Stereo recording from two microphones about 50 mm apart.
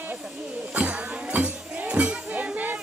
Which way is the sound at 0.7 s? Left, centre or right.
Right.